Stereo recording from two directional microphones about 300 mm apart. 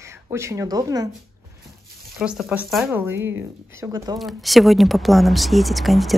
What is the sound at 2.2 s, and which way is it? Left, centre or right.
A woman's voice, centre.